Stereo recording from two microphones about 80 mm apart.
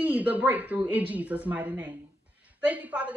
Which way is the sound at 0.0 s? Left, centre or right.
Centre.